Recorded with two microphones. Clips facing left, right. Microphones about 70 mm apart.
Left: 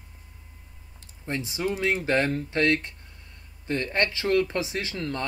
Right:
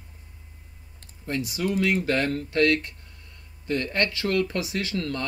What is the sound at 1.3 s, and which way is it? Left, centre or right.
Speech, left.